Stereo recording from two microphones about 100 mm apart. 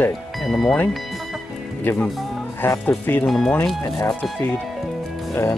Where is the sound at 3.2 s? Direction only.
Centre (ahead or behind).